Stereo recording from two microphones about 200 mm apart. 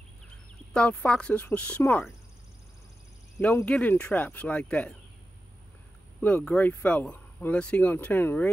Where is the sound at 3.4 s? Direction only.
5° left (ahead or behind).